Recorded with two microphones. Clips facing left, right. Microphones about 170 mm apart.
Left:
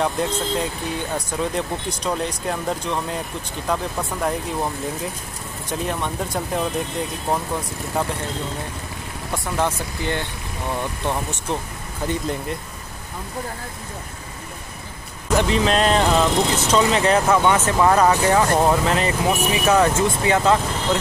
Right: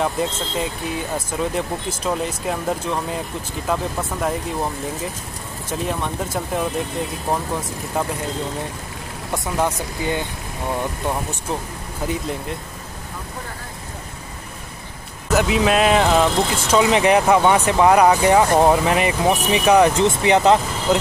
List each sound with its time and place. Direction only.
0.0 s speech: centre (ahead or behind)
5.7 s speech: centre (ahead or behind)
9.6 s speech: 10° right (ahead or behind)
12.1 s speech: centre (ahead or behind)
15.2 s speech: 5° right (ahead or behind)